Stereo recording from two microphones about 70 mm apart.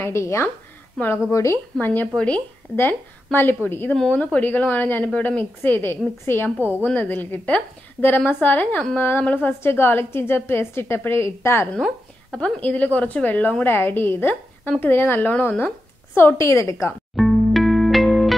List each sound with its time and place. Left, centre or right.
0.0 s a woman's voice: left
1.0 s speech: centre
1.3 s a woman's voice: left
1.8 s a woman's voice: left
4.1 s a woman's voice: centre; by 11.7 s left
12.3 s a woman's voice: centre
16.3 s a woman's voice: left
17.1 s music: centre